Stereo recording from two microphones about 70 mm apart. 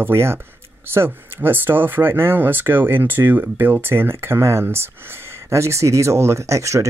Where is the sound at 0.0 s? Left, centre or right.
Right.